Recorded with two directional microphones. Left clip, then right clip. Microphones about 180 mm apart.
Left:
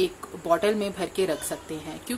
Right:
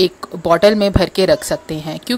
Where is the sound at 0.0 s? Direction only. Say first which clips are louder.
Right 11 dB; 45° right (ahead or behind).